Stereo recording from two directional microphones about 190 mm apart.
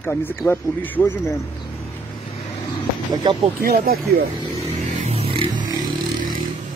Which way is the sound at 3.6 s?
50° right (ahead or behind).